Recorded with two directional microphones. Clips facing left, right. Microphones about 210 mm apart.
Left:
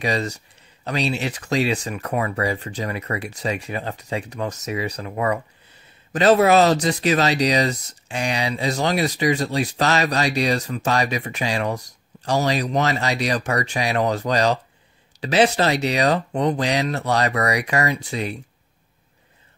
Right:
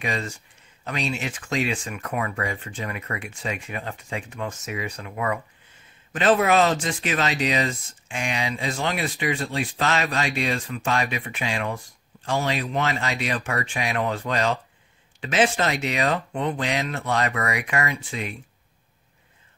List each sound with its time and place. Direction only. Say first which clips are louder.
0.0 s speech: left 5 dB; 40° left (ahead or behind)